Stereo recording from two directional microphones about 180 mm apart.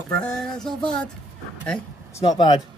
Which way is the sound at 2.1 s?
25° left (ahead or behind).